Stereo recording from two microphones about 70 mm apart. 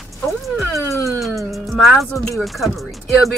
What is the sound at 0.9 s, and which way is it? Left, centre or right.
Music, left.